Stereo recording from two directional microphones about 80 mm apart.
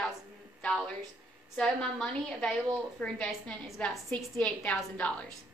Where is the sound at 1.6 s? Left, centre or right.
Centre.